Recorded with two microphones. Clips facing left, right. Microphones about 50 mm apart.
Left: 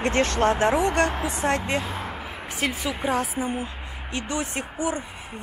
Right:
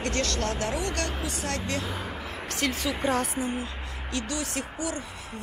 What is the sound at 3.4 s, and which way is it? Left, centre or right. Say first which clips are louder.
Speech: left 2 dB; centre.